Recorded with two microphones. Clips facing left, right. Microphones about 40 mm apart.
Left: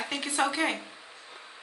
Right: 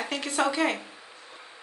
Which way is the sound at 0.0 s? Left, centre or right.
Centre.